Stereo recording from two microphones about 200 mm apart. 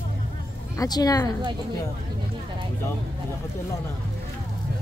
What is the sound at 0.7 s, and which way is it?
Speech, 20° left (ahead or behind).